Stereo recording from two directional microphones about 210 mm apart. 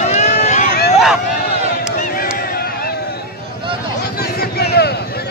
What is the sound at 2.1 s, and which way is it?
Honk, 45° left (ahead or behind).